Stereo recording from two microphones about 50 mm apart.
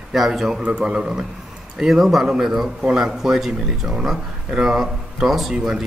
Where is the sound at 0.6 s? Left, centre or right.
Centre.